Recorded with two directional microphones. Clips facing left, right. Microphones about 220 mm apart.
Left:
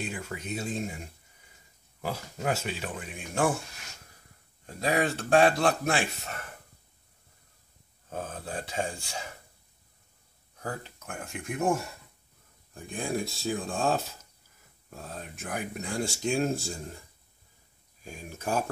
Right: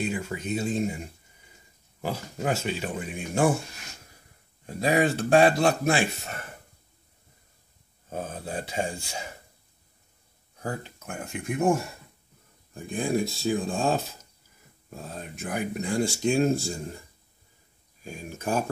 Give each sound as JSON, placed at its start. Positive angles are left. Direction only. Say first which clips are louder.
{"t": 0.0, "sound": "speech", "louder": "right 6 dB", "side_deg": 0}
{"t": 2.5, "sound": "speech", "louder": "right 4 dB", "side_deg": 0}
{"t": 4.6, "sound": "speech", "louder": "right 4 dB", "side_deg": -10}
{"t": 8.1, "sound": "speech", "louder": "right 3 dB", "side_deg": -5}
{"t": 10.6, "sound": "speech", "louder": "right 3 dB", "side_deg": -5}
{"t": 12.7, "sound": "speech", "louder": "right 5 dB", "side_deg": 0}
{"t": 18.0, "sound": "speech", "louder": "right 3 dB", "side_deg": -5}